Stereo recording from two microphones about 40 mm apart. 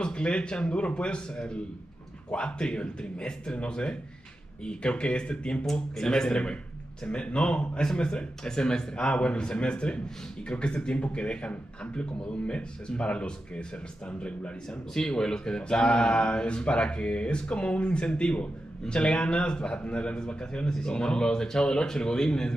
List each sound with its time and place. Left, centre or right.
0.0 s speech: left
5.7 s speech: centre
15.0 s speech: centre